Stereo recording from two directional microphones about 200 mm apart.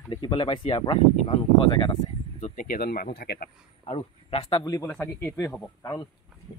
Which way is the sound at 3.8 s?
30° left (ahead or behind).